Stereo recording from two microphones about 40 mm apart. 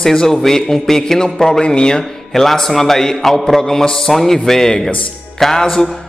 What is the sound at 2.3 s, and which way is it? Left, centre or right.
Speech, centre.